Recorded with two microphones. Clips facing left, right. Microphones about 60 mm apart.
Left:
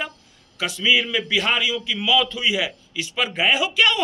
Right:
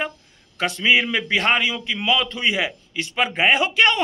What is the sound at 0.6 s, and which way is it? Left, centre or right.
A man's voice, right.